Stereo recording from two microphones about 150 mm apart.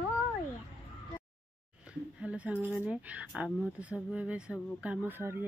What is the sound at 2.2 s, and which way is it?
Speech, 5° right (ahead or behind).